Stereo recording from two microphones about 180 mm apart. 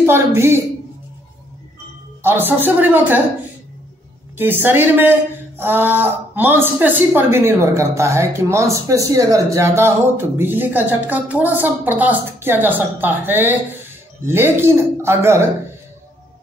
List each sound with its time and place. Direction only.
0.0 s a woman's voice: 15° right (ahead or behind)
2.2 s a woman's voice: 10° right (ahead or behind)
4.4 s a woman's voice: 10° right (ahead or behind)